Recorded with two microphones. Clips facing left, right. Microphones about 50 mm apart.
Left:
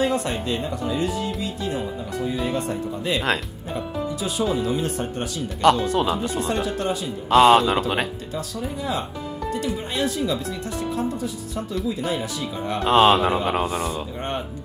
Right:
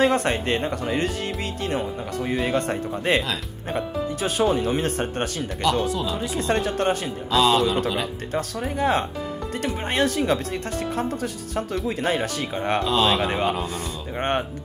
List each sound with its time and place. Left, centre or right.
0.0 s speech: right
5.6 s speech: left
6.3 s speech: right
7.2 s speech: left
8.3 s speech: right
12.8 s speech: left